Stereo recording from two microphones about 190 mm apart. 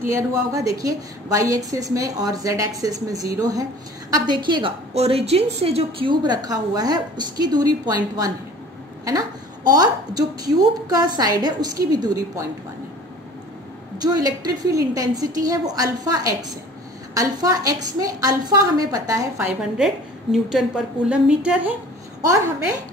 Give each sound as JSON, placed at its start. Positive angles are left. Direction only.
{"t": 0.1, "sound": "a woman's voice", "side_deg": -15}
{"t": 9.7, "sound": "a woman's voice", "side_deg": -20}
{"t": 13.9, "sound": "a woman's voice", "side_deg": -20}
{"t": 19.8, "sound": "a woman's voice", "side_deg": 0}